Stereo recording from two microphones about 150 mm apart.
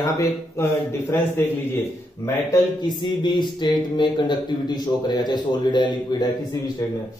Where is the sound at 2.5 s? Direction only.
30° left (ahead or behind).